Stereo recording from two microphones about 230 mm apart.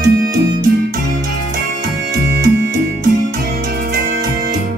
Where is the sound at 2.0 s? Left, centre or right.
Right.